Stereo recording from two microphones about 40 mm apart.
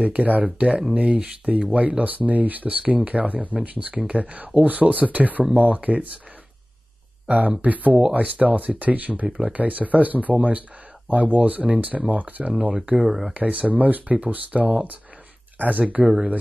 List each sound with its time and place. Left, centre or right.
0.0 s speech: right
5.4 s speech: right
5.7 s speech: right
7.2 s speech: right